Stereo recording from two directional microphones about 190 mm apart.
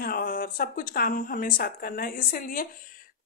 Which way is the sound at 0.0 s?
50° left (ahead or behind).